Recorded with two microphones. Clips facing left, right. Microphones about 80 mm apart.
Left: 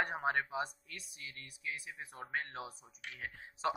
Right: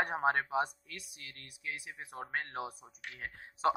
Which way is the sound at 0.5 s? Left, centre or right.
Right.